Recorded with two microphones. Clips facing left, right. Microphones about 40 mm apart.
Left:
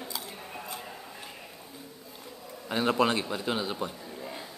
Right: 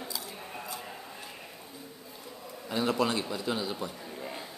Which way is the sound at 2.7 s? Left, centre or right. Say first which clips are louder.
Left 3 dB; left.